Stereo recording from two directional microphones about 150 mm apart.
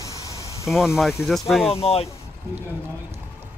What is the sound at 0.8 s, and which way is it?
Speech, 5° right (ahead or behind).